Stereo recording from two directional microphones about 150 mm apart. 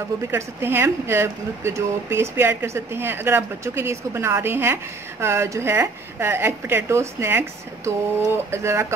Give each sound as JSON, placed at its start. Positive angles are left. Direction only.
{"t": 0.3, "sound": "speech", "side_deg": -15}